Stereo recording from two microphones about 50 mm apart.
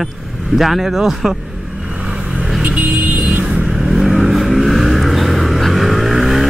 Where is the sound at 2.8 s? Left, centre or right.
Right.